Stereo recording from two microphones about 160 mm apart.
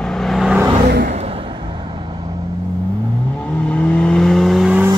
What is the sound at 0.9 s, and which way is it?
Vehicle, 85° right.